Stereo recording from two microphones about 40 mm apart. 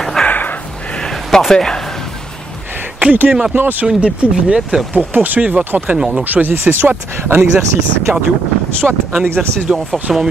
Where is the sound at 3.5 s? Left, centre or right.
Right.